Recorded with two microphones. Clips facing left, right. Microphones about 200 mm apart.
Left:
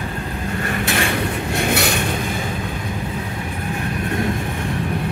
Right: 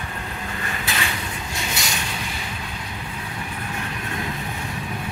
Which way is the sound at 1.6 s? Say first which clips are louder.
Left 11 dB; 60° left (ahead or behind).